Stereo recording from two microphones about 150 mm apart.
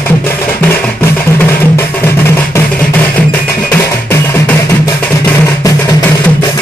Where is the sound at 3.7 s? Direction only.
15° left (ahead or behind).